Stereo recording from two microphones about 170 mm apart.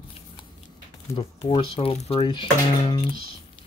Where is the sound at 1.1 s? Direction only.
30° left (ahead or behind).